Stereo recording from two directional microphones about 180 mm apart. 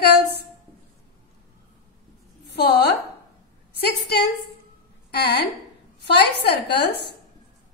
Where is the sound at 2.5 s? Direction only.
65° left (ahead or behind).